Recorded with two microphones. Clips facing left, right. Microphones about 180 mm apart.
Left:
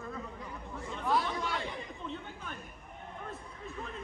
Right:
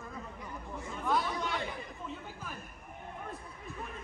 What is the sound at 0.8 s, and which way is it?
Chatter, centre (ahead or behind).